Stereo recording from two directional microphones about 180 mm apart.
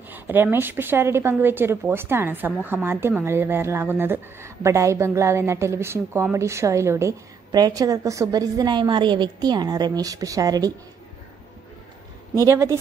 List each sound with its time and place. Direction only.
0.1 s a woman's voice: 10° right (ahead or behind)